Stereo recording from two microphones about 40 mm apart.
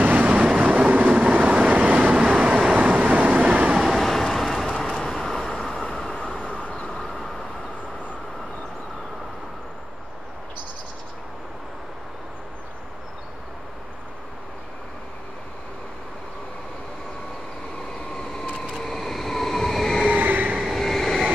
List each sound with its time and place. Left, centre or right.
0.0 s train: right
1.1 s vehicle: right
3.3 s vehicle: right
3.8 s vehicle: centre
6.4 s vehicle: left
6.9 s vehicle: centre
18.1 s a sound: centre
18.8 s train: centre
20.1 s train: right
20.7 s train: centre